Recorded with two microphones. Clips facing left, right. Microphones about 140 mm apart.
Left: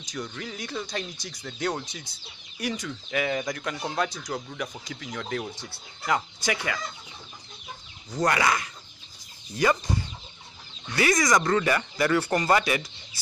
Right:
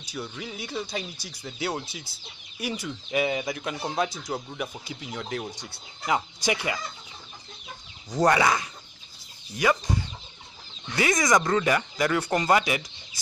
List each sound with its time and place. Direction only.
0.0 s speech: 10° right (ahead or behind)
4.2 s speech: 20° right (ahead or behind)
4.6 s speech: 10° right (ahead or behind)
6.0 s speech: 20° right (ahead or behind)
8.1 s speech: 15° right (ahead or behind)
11.0 s speech: 20° right (ahead or behind)
11.3 s speech: 10° right (ahead or behind)